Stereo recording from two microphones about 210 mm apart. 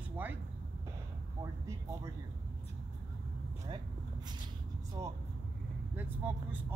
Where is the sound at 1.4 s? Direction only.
15° right (ahead or behind).